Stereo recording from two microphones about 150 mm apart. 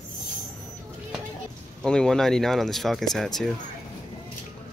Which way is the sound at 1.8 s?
5° left (ahead or behind).